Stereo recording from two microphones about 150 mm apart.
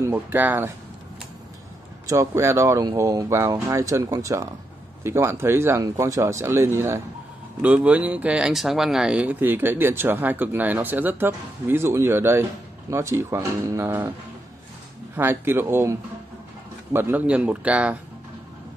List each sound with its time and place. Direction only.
0.0 s speech: 15° right (ahead or behind)
2.0 s speech: 20° right (ahead or behind)
15.1 s speech: 15° right (ahead or behind)